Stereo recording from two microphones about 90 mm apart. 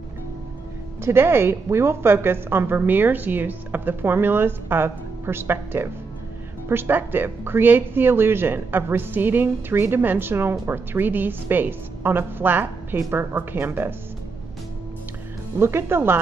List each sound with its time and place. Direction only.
1.0 s a woman's voice: 25° right (ahead or behind)
15.6 s a woman's voice: 25° right (ahead or behind)